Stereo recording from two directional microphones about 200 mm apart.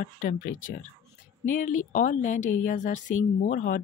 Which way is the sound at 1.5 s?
40° left (ahead or behind).